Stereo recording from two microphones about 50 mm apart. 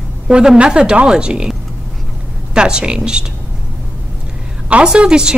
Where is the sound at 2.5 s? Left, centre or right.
Centre.